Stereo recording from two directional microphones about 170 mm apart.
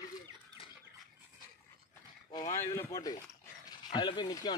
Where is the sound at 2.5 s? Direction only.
15° left (ahead or behind).